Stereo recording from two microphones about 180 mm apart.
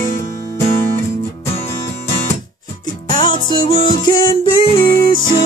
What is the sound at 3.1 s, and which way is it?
Music, 25° left (ahead or behind).